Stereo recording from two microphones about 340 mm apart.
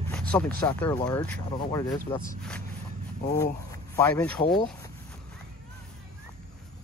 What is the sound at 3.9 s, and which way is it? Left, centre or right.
Speech, centre.